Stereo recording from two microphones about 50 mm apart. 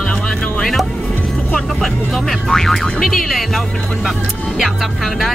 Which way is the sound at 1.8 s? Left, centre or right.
Centre.